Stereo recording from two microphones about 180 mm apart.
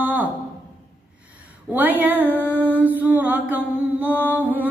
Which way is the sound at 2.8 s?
10° right (ahead or behind).